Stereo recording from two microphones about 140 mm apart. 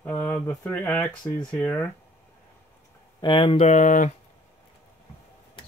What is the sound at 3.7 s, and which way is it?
Speech, 60° left (ahead or behind).